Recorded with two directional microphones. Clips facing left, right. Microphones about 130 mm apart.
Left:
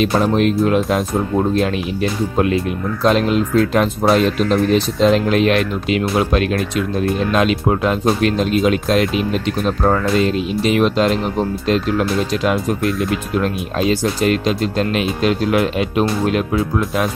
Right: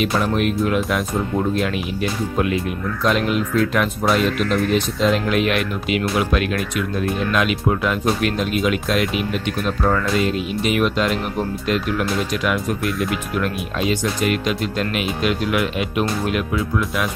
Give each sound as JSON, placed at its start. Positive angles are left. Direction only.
{"t": 0.0, "sound": "speech", "side_deg": 30}
{"t": 3.0, "sound": "speech", "side_deg": 30}